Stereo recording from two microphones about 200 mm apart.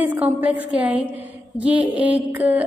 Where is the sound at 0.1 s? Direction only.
10° right (ahead or behind).